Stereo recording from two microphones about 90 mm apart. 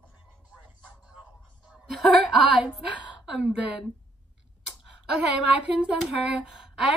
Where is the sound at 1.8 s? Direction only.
5° right (ahead or behind).